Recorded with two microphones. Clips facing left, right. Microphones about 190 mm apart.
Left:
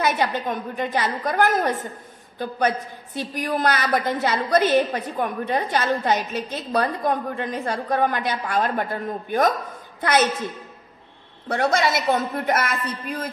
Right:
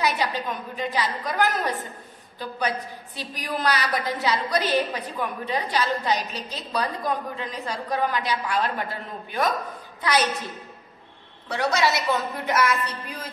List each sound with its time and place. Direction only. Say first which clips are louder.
0.0 s a woman's voice: left 3 dB; 55° left (ahead or behind)
11.4 s a woman's voice: left 2 dB; 50° left (ahead or behind)